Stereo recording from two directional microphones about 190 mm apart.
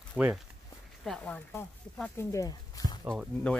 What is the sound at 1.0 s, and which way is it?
Speech, 5° left (ahead or behind).